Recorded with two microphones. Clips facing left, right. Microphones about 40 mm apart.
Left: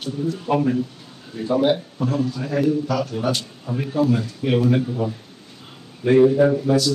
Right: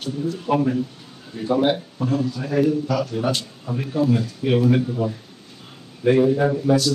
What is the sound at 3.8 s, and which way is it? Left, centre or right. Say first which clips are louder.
Speech: even; centre.